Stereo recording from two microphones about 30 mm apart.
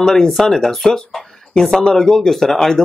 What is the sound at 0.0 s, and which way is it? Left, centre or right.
Speech, centre.